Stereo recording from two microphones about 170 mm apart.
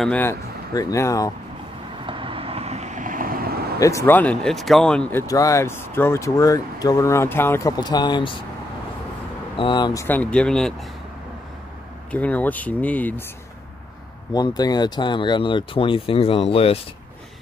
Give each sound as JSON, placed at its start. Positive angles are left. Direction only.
{"t": 0.0, "sound": "speech", "side_deg": 10}
{"t": 2.0, "sound": "vehicle", "side_deg": -30}
{"t": 3.8, "sound": "speech", "side_deg": 15}
{"t": 5.2, "sound": "speech", "side_deg": 20}
{"t": 9.6, "sound": "speech", "side_deg": 30}
{"t": 10.0, "sound": "speech", "side_deg": 10}
{"t": 12.1, "sound": "speech", "side_deg": 10}
{"t": 14.3, "sound": "speech", "side_deg": 25}